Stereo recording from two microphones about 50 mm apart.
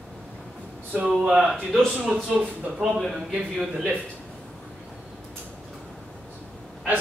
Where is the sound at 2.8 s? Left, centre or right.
Centre.